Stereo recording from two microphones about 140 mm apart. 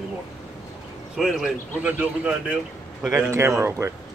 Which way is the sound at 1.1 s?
Centre (ahead or behind).